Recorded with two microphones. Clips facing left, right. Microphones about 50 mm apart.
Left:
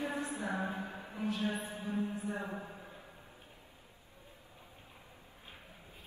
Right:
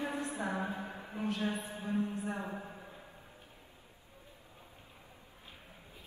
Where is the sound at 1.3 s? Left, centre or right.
Right.